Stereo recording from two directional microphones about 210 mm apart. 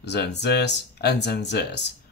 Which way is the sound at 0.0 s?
55° left (ahead or behind).